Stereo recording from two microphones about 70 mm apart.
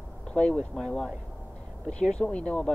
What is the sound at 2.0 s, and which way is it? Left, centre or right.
Speech, centre.